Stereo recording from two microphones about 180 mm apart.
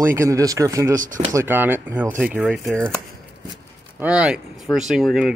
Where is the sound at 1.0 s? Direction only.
45° right (ahead or behind).